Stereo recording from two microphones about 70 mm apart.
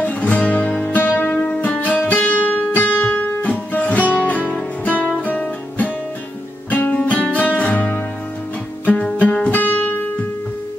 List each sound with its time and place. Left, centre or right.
0.0 s music: centre
1.8 s guitar: left
4.3 s music: left